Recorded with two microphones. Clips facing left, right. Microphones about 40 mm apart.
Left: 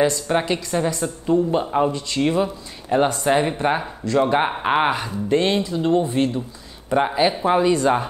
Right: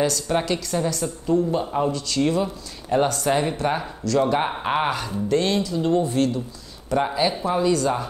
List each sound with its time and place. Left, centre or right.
0.0 s a woman's voice: left